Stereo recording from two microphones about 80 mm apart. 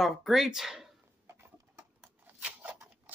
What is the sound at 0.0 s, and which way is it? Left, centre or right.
Speech, centre.